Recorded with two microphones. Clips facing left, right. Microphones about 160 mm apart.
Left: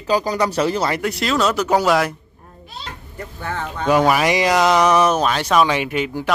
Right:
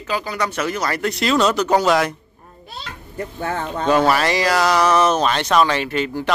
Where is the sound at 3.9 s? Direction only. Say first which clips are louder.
Left 1 dB; 15° left (ahead or behind).